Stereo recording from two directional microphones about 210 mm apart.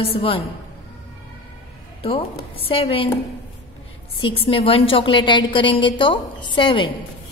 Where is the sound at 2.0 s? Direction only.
25° left (ahead or behind).